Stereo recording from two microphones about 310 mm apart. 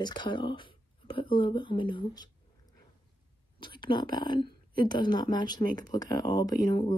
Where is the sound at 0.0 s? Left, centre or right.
Centre.